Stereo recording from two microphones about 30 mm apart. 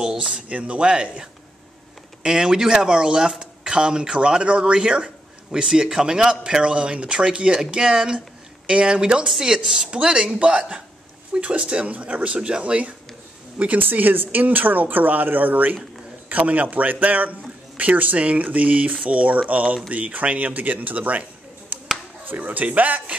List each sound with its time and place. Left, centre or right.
0.0 s speech: centre
0.5 s speech: right
2.2 s speech: right
6.6 s speech: right
7.7 s speech: right
8.6 s speech: right
10.1 s speech: right
13.7 s speech: right
16.3 s a man's voice: right
22.8 s a man's voice: right